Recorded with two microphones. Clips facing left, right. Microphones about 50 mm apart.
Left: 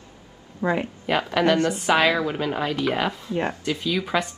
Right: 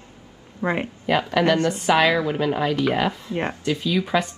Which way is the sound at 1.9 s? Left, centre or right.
Centre.